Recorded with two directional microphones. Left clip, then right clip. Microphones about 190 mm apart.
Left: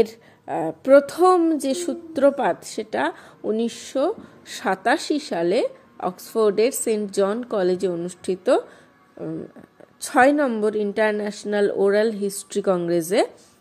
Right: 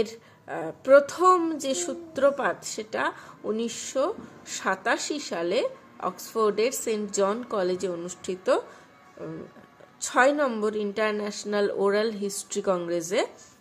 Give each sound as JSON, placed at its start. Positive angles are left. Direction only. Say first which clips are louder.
{"t": 0.0, "sound": "a woman's voice", "louder": "left 8 dB", "side_deg": 25}
{"t": 9.9, "sound": "a woman's voice", "louder": "left 5 dB", "side_deg": 25}